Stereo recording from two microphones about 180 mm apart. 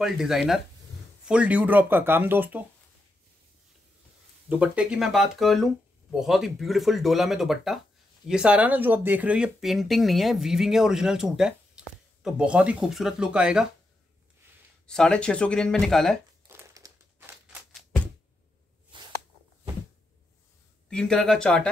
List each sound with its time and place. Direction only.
0.0 s speech: centre (ahead or behind)
4.5 s speech: 5° right (ahead or behind)
14.9 s speech: 5° left (ahead or behind)
16.4 s crumpling: 15° right (ahead or behind)
18.9 s a sound: 30° right (ahead or behind)
20.9 s speech: 5° left (ahead or behind)